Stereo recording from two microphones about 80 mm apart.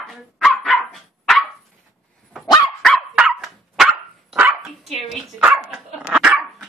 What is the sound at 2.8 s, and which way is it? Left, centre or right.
Dog, centre.